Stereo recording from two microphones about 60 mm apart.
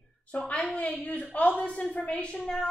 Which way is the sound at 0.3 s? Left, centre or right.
Left.